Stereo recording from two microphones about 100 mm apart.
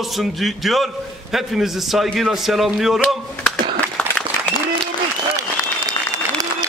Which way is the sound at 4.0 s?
10° left (ahead or behind).